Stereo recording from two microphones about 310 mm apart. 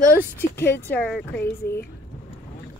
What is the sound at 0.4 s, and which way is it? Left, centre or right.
Speech, centre.